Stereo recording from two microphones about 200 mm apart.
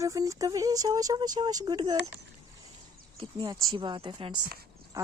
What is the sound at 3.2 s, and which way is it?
Speech, 20° right (ahead or behind).